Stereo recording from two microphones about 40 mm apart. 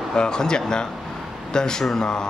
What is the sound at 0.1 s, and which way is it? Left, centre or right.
Speech, centre.